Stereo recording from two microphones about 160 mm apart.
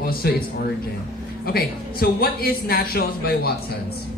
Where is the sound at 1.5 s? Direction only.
70° left (ahead or behind).